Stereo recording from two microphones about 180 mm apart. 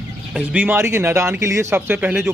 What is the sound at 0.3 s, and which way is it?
A man's voice, 5° right (ahead or behind).